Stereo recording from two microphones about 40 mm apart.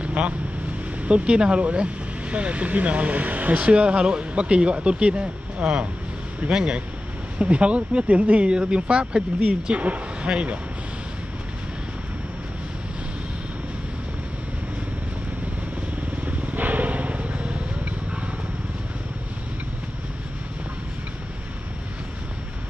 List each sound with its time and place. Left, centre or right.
0.0 s vehicle: right
1.0 s speech: right
16.3 s vehicle: right